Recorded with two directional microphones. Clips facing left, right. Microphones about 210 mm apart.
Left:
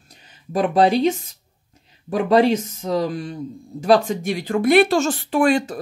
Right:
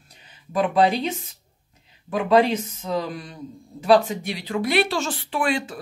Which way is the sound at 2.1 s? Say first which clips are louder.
Left 3 dB; 40° left (ahead or behind).